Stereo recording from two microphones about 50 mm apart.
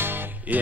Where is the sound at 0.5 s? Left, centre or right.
Right.